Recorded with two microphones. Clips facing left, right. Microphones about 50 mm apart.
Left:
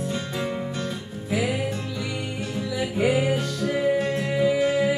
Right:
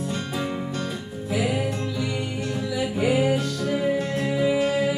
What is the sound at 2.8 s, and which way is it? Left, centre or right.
Music, centre.